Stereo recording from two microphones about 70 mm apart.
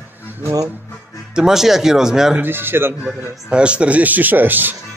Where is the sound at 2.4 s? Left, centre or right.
Right.